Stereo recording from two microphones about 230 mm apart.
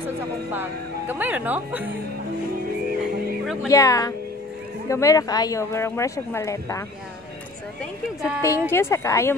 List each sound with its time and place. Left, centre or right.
0.5 s speech: centre
3.6 s speech: centre
7.8 s speech: centre
8.6 s speech: centre